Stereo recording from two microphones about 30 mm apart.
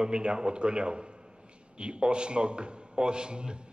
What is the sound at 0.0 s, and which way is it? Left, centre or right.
A man's voice, right.